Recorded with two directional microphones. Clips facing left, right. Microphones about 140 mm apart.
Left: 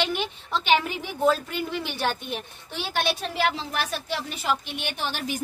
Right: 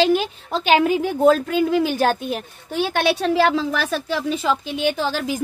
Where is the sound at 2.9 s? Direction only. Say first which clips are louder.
Right 7 dB; 70° right (ahead or behind).